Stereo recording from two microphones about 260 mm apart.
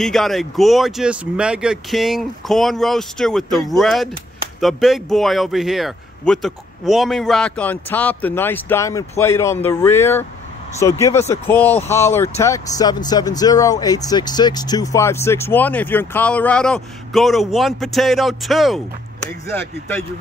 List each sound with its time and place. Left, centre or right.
0.0 s speech: centre